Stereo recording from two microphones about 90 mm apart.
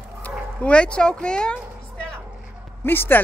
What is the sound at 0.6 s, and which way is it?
Speech, 10° left (ahead or behind).